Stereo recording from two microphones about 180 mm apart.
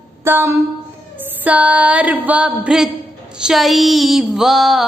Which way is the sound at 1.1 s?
10° right (ahead or behind).